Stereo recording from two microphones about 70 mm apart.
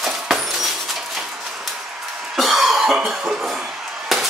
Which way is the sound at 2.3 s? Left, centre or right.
Centre.